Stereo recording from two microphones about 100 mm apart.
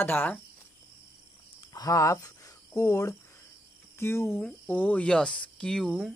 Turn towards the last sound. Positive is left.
turn(degrees=5)  # may be behind; listen again after turning